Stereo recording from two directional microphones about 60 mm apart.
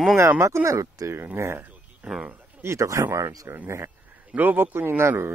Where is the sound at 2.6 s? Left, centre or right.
Right.